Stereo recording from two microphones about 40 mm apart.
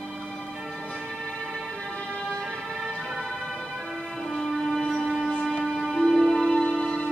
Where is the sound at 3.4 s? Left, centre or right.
Centre.